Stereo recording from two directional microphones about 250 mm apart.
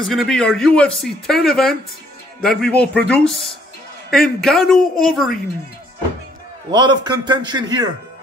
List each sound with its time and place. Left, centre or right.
0.0 s speech: centre
6.7 s a man's voice: centre